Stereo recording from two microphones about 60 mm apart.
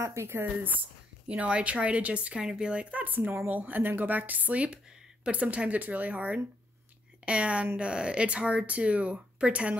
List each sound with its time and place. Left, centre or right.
0.0 s speech: right
1.2 s speech: centre